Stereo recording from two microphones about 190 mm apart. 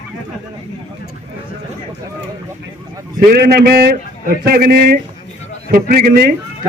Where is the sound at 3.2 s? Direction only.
55° right (ahead or behind).